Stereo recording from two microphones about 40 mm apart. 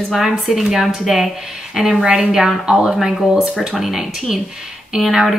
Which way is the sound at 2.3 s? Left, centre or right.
Centre.